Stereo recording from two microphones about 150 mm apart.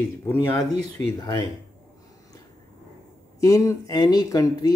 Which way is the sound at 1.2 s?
30° left (ahead or behind).